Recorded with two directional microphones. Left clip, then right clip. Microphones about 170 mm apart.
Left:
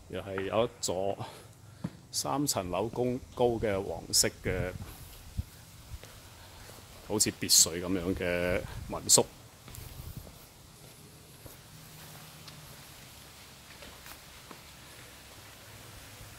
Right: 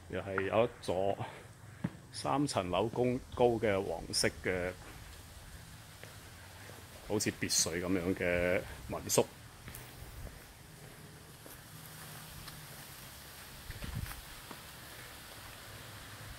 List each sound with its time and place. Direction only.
0.1 s speech: 15° left (ahead or behind)
7.1 s speech: 25° left (ahead or behind)